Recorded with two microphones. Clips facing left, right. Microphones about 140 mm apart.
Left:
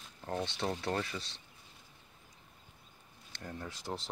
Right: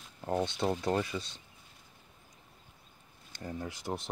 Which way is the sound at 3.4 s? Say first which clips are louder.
Right 4 dB; 15° right (ahead or behind).